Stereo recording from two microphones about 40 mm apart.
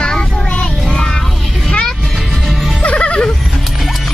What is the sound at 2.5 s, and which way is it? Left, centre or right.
Music, centre.